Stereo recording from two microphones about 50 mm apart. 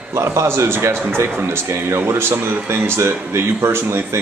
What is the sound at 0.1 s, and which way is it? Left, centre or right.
A man's voice, right.